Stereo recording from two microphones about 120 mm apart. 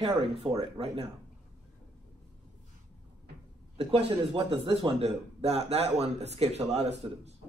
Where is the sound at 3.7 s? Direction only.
50° right (ahead or behind).